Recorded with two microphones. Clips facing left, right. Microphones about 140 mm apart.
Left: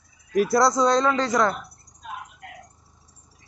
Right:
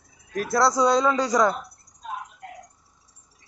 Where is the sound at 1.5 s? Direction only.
35° right (ahead or behind).